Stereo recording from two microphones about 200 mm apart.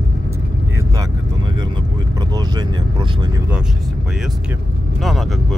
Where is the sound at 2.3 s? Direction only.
20° right (ahead or behind).